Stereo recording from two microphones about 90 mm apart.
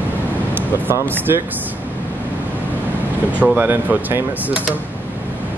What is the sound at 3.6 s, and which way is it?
Speech, 20° right (ahead or behind).